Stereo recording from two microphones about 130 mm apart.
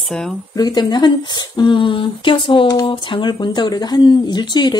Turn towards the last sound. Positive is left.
turn(degrees=35)  # may be behind; listen again after turning